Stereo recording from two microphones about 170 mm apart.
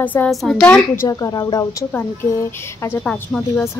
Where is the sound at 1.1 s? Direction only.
20° left (ahead or behind).